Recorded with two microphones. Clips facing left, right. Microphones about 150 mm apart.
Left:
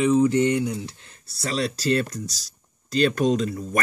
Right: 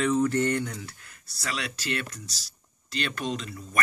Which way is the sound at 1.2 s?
30° left (ahead or behind).